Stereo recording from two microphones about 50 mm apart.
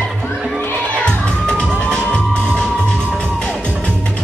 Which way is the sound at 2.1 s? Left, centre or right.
Left.